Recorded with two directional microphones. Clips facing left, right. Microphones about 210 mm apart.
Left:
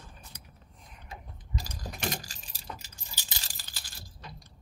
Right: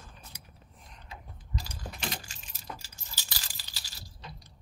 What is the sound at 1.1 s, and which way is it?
Keys jangling, 45° left (ahead or behind).